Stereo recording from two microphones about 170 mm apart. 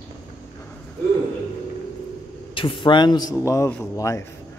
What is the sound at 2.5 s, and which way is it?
A man's voice, 30° left (ahead or behind).